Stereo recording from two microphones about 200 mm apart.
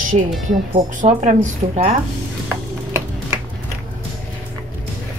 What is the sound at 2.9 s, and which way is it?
Music, 10° right (ahead or behind).